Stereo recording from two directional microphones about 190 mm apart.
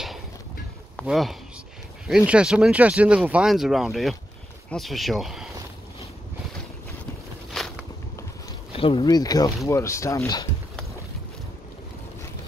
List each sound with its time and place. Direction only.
0.9 s speech: centre (ahead or behind)
7.5 s walk: centre (ahead or behind)
8.7 s speech: 30° left (ahead or behind)